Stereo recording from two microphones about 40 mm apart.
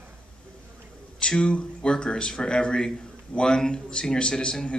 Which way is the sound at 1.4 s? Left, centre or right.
Left.